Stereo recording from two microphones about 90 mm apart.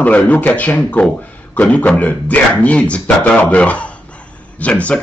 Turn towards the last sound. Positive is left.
turn(degrees=15)  # may be behind; listen again after turning